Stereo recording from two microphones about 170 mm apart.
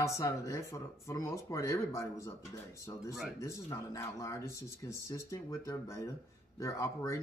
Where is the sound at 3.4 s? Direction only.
15° left (ahead or behind).